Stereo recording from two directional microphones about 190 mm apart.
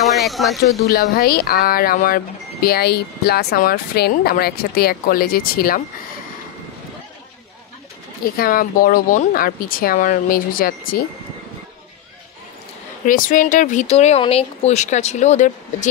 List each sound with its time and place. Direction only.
0.0 s speech: centre (ahead or behind)
0.8 s speech: 50° left (ahead or behind)
8.2 s speech: 50° left (ahead or behind)
13.0 s speech: 45° left (ahead or behind)